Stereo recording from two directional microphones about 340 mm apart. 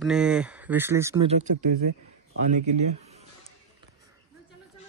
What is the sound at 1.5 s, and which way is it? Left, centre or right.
Speech, right.